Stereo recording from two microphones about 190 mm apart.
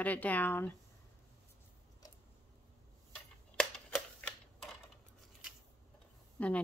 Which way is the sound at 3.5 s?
5° left (ahead or behind).